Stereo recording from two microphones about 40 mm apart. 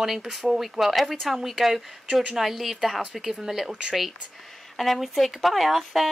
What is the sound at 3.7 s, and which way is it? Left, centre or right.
Speech, right.